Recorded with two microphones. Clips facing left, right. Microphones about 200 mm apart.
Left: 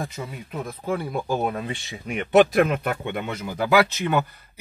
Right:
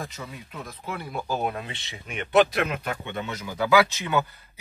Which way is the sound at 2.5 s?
50° left (ahead or behind).